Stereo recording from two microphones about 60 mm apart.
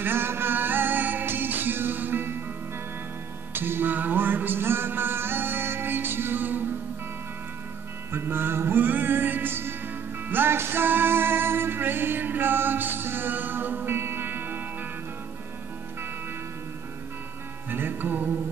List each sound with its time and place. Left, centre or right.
0.0 s music: right
3.5 s music: right
8.1 s music: right
17.6 s music: right